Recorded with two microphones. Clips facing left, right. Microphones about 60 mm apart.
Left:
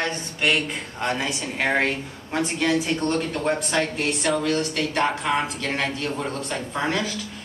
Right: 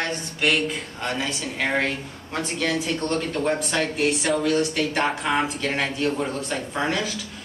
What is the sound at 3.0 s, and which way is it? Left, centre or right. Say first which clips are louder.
Speech: left 1 dB; centre.